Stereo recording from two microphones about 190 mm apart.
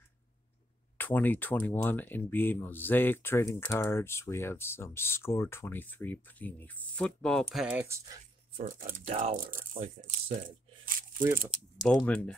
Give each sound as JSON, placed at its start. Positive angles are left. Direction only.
{"t": 0.9, "sound": "speech", "side_deg": 10}
{"t": 7.7, "sound": "speech", "side_deg": -15}
{"t": 8.6, "sound": "speech", "side_deg": -45}
{"t": 9.0, "sound": "speech", "side_deg": -35}
{"t": 9.8, "sound": "speech", "side_deg": -35}
{"t": 11.4, "sound": "speech", "side_deg": 0}